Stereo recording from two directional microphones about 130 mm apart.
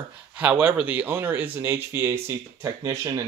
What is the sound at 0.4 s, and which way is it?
Speech, 10° right (ahead or behind).